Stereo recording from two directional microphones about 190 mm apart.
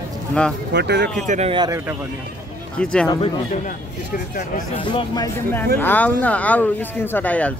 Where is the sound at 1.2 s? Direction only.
40° right (ahead or behind).